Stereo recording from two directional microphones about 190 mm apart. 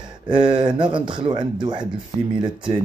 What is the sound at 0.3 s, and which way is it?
Speech, 25° right (ahead or behind).